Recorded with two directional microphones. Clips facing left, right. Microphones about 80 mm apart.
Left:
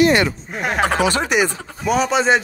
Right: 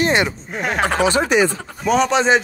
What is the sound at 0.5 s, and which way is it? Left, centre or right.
Speech, centre.